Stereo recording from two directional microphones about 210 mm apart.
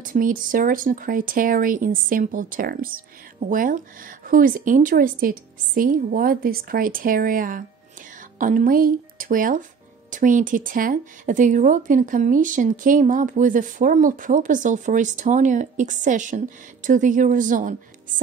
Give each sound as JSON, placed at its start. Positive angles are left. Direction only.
{"t": 0.0, "sound": "speech", "side_deg": -40}